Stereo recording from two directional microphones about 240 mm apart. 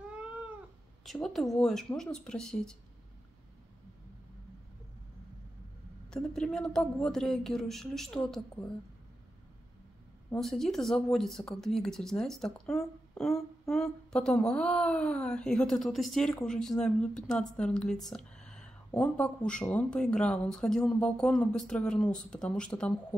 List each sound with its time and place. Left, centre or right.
1.0 s speech: centre
6.0 s speech: centre
10.3 s speech: centre